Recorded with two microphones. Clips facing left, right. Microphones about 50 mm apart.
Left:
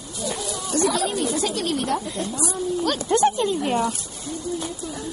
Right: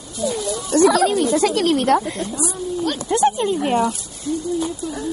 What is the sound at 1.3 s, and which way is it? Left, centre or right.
Speech, right.